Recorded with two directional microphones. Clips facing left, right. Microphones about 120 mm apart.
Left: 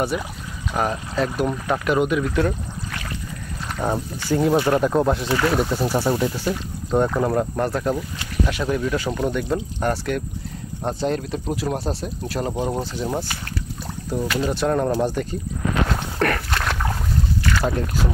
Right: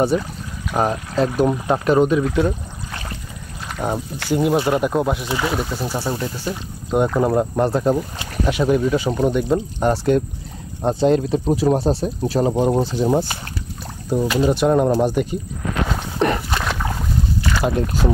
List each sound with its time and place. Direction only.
0.7 s speech: 25° right (ahead or behind)
3.8 s speech: 10° right (ahead or behind)
5.6 s speech: centre (ahead or behind)
6.5 s speech: 15° right (ahead or behind)
16.4 s boat: 5° right (ahead or behind)
17.5 s speech: 15° right (ahead or behind)